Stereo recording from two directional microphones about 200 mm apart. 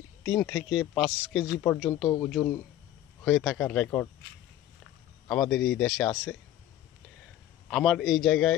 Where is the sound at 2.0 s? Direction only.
20° left (ahead or behind).